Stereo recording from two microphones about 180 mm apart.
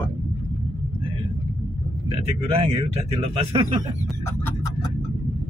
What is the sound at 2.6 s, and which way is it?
Speech, 30° right (ahead or behind).